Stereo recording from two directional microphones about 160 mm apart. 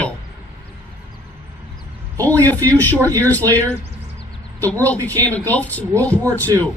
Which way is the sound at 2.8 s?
10° left (ahead or behind).